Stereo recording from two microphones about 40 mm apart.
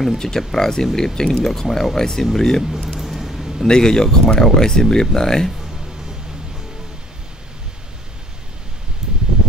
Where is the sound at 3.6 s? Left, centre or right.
Centre.